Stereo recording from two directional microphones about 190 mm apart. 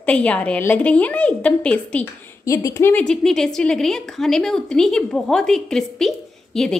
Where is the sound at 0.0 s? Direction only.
5° left (ahead or behind).